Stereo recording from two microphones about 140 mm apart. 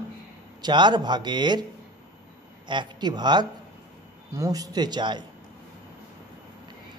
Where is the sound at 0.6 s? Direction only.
30° right (ahead or behind).